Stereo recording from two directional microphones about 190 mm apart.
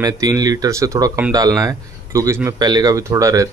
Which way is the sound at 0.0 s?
20° right (ahead or behind).